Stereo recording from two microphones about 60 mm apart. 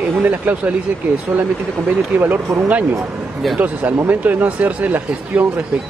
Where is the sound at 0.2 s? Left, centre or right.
Right.